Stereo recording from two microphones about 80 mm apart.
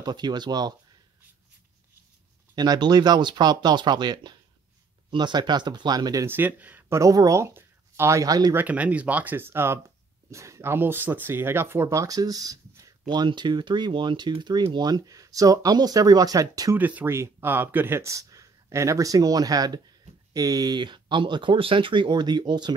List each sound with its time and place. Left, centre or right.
0.0 s speech: right
2.5 s speech: right
6.2 s speech: right
7.0 s speech: right
8.5 s speech: centre; by 12.9 s right
13.1 s speech: right
16.7 s speech: right
18.1 s speech: right